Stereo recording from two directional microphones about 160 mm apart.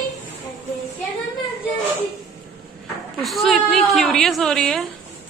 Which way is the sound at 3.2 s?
Centre (ahead or behind).